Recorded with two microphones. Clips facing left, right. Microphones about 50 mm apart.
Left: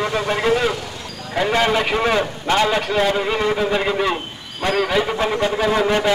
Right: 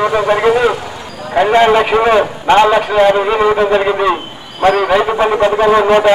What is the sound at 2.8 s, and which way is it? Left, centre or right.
A man's voice, centre.